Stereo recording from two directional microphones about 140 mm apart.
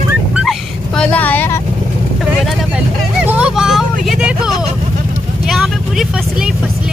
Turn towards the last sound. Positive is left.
turn(degrees=0)  # may be behind; listen again after turning